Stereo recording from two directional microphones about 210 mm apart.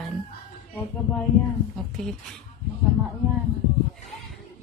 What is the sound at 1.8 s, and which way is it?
Speech, centre (ahead or behind).